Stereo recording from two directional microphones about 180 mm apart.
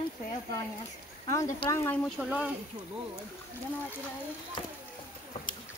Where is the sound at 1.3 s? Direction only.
15° left (ahead or behind).